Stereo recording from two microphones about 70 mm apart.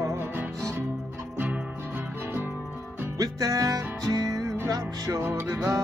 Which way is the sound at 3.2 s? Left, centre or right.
Right.